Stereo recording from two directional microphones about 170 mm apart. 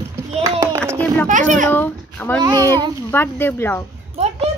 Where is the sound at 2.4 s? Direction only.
20° right (ahead or behind).